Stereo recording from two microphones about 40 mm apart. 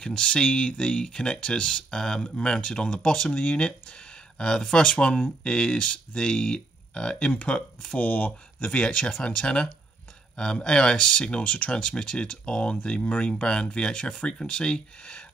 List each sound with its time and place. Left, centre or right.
0.0 s speech: left
4.4 s speech: centre
8.0 s speech: left
8.5 s speech: left
10.3 s speech: left
11.4 s speech: left
11.7 s speech: left